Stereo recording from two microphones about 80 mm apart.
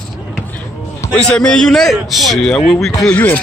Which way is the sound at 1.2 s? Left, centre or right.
Centre.